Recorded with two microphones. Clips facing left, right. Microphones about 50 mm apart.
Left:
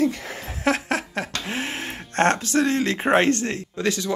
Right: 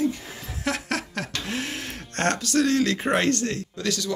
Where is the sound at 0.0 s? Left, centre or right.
Left.